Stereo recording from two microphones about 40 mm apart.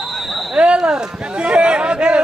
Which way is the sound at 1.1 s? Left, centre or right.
Right.